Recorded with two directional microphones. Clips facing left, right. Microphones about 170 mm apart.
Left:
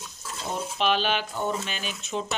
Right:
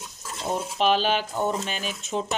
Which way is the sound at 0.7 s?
40° right (ahead or behind).